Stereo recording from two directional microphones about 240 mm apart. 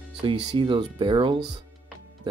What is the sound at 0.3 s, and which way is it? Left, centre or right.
Speech, right.